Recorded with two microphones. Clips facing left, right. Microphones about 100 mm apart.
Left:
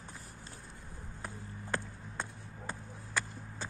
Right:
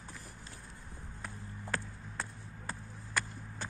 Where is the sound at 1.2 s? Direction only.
25° left (ahead or behind).